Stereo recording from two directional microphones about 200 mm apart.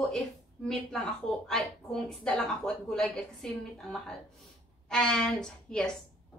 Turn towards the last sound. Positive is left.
turn(degrees=5)  # may be behind; listen again after turning